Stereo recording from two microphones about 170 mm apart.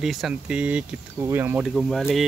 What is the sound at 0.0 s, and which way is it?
Speech, centre (ahead or behind).